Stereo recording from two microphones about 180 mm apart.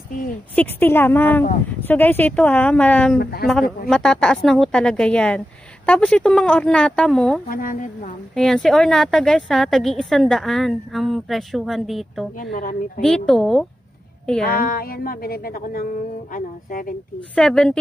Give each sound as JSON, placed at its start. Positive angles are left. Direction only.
{"t": 0.6, "sound": "a woman's voice", "side_deg": 10}
{"t": 3.2, "sound": "a woman's voice", "side_deg": 60}
{"t": 3.9, "sound": "a woman's voice", "side_deg": 5}
{"t": 7.4, "sound": "a woman's voice", "side_deg": 50}
{"t": 8.4, "sound": "a woman's voice", "side_deg": 5}
{"t": 12.5, "sound": "a woman's voice", "side_deg": 55}
{"t": 13.0, "sound": "a woman's voice", "side_deg": 5}
{"t": 14.4, "sound": "a woman's voice", "side_deg": 55}
{"t": 17.4, "sound": "a woman's voice", "side_deg": 5}